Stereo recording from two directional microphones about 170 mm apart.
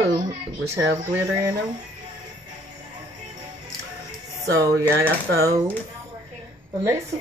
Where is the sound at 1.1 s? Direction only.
15° right (ahead or behind).